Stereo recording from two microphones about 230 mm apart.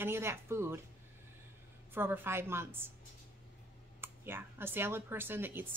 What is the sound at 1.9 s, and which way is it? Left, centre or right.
Speech, centre.